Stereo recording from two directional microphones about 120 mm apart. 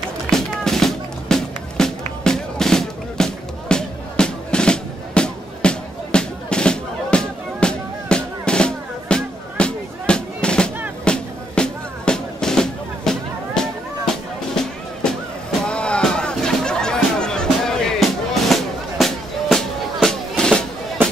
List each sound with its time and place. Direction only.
0.3 s music: 5° left (ahead or behind)